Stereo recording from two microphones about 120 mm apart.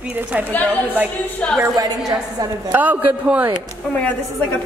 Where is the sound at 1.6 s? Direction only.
30° right (ahead or behind).